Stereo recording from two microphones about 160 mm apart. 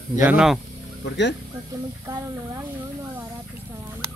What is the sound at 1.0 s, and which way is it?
Speech, 90° left.